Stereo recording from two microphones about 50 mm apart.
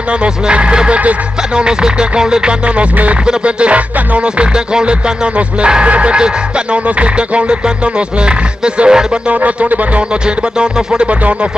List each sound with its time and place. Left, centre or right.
0.2 s music: right